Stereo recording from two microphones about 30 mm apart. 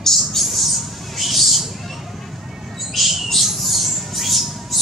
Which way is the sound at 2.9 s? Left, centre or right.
Centre.